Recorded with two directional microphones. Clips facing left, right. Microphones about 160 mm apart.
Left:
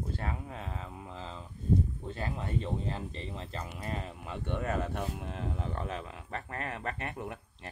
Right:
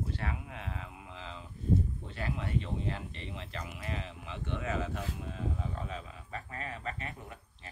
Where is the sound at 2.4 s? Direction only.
35° left (ahead or behind); by 7.4 s 60° left (ahead or behind).